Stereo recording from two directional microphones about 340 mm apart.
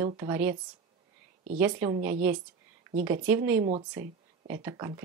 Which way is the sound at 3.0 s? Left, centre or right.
Centre.